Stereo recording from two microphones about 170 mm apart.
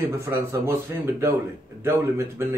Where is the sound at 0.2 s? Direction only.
15° right (ahead or behind).